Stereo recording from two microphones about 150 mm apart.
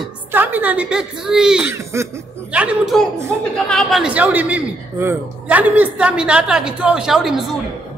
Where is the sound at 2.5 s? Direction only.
10° right (ahead or behind).